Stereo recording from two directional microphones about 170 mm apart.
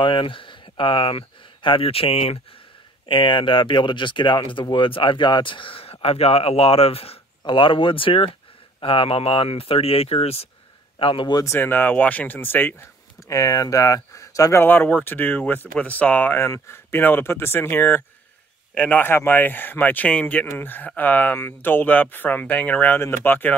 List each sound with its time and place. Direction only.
0.0 s speech: 30° left (ahead or behind); by 23.5 s 10° left (ahead or behind)